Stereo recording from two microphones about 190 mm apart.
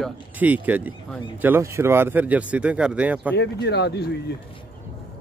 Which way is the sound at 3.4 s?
60° left (ahead or behind).